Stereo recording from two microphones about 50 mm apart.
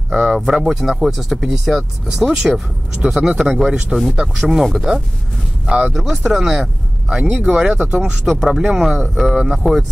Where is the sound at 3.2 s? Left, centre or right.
Centre.